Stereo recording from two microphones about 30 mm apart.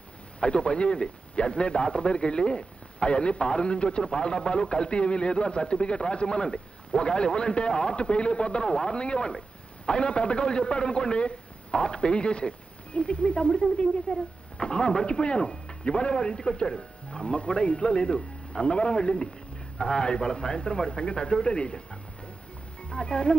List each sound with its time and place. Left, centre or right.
0.4 s a man's voice: left
13.5 s a man's voice: left
22.8 s speech: left